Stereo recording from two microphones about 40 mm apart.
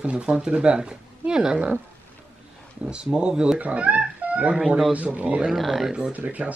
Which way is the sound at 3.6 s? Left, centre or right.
Right.